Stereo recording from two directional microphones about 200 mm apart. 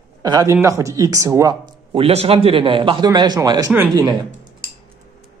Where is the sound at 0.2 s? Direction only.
20° right (ahead or behind).